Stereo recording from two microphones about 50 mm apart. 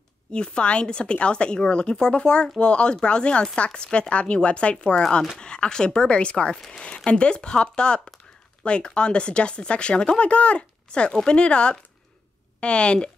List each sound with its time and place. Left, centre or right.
0.3 s a woman's voice: centre